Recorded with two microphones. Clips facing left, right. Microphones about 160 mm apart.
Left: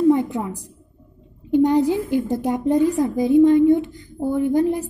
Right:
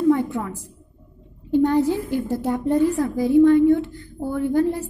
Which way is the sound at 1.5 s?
15° left (ahead or behind).